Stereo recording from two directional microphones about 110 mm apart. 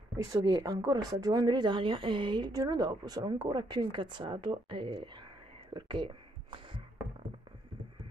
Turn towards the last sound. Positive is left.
turn(degrees=-50)  # may be behind; listen again after turning